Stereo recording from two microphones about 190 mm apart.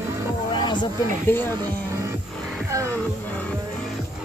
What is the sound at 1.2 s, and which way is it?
Speech, 10° left (ahead or behind).